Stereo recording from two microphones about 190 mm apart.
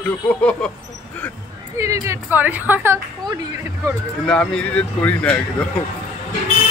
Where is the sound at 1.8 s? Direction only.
15° right (ahead or behind).